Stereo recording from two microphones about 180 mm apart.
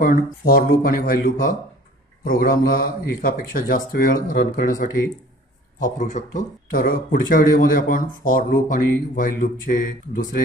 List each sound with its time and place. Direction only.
0.0 s speech: 50° left (ahead or behind)